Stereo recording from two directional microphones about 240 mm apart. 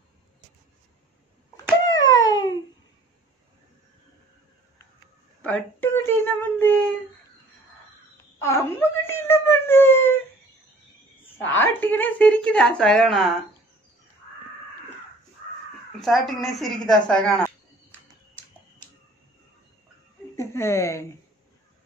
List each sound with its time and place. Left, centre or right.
1.9 s a sound: centre
5.4 s speech: centre
8.4 s wail: centre
11.3 s speech: centre
16.0 s speech: centre
20.3 s a sound: centre